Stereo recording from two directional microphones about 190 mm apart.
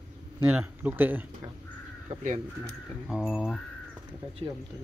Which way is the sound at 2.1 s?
35° right (ahead or behind).